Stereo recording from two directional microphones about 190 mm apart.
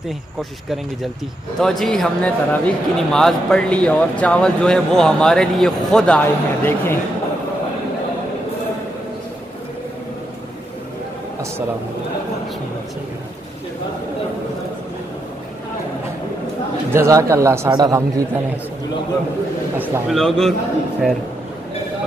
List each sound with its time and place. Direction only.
0.4 s speech: centre (ahead or behind)
16.9 s speech: 15° right (ahead or behind)
20.1 s speech: centre (ahead or behind)